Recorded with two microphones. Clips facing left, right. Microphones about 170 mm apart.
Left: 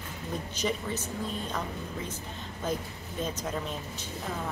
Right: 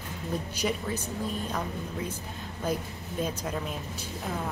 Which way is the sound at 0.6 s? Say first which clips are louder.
Even; 10° right (ahead or behind).